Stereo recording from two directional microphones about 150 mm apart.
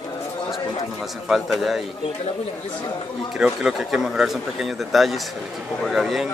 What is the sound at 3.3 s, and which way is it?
Speech, 5° right (ahead or behind).